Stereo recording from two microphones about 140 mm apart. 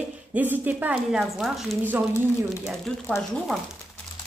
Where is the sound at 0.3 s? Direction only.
10° right (ahead or behind).